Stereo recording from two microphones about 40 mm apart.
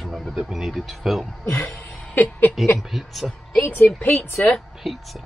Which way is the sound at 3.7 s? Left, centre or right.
Left.